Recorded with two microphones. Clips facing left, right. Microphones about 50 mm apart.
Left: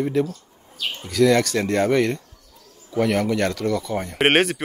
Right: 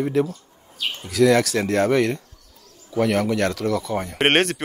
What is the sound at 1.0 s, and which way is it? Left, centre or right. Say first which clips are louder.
Speech: even; centre.